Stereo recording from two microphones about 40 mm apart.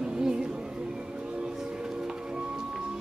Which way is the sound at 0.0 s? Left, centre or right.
Right.